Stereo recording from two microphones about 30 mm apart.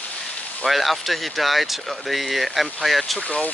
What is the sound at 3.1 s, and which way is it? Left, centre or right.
Speech, left.